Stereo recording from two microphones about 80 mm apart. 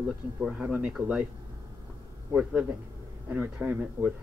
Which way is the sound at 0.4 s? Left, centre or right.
Centre.